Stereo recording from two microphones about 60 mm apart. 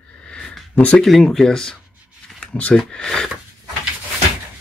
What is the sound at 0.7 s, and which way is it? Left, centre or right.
Speech, left.